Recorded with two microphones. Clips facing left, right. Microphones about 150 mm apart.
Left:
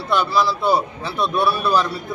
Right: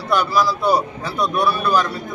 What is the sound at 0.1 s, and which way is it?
A man's voice, 25° left (ahead or behind).